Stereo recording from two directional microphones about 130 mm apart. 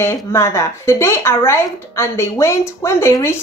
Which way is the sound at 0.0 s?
20° left (ahead or behind).